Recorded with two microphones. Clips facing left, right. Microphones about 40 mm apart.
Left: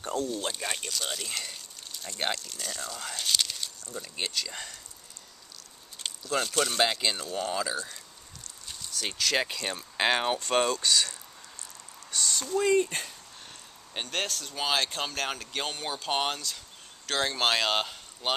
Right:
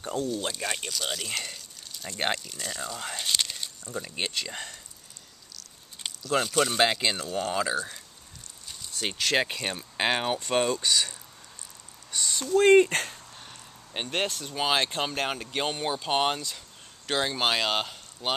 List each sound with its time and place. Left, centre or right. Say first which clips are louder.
0.0 s speech: right 1 dB; centre
1.2 s a sound: right 3 dB; centre
2.0 s speech: right 3 dB; centre
3.0 s speech: even; centre
6.3 s speech: right 3 dB; centre
9.0 s speech: right 2 dB; right
12.1 s a sound: even; centre
12.7 s speech: right 7 dB; right
13.9 s speech: right 3 dB; centre